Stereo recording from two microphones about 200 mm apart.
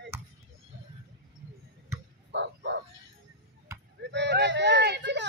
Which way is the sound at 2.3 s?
60° right (ahead or behind).